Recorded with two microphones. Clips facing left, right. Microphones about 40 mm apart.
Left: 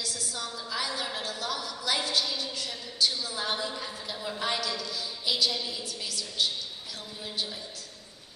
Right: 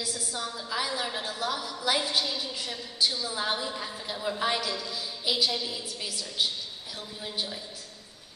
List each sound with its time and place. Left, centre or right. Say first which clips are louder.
0.0 s a woman's voice: right 2 dB; centre